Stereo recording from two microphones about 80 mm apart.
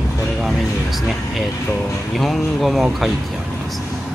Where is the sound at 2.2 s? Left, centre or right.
Centre.